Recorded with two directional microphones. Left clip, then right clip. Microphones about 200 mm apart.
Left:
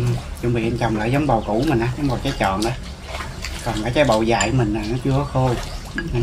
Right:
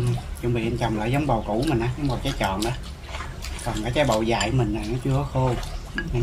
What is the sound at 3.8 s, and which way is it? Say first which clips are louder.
Speech: left 5 dB; 20° left (ahead or behind).